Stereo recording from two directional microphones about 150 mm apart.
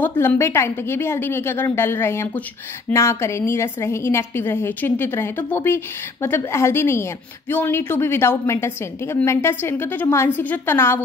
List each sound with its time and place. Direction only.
0.0 s a woman's voice: 15° left (ahead or behind)